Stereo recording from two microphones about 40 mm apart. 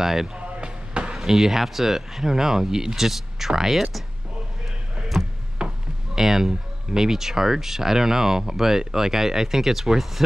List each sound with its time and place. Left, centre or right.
0.0 s speech: centre
0.4 s a sound: right
1.1 s speech: centre
5.6 s chop: right
6.1 s speech: centre